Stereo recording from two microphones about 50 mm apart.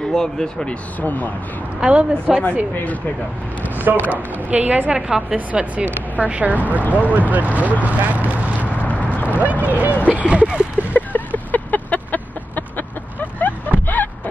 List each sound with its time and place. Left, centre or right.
0.1 s speech: centre
1.0 s speech: left
1.8 s a woman's voice: right
2.3 s speech: centre
3.6 s a woman's voice: right
4.9 s a woman's voice: centre
8.6 s a sound: left
9.4 s a woman's voice: right
10.9 s chicken: left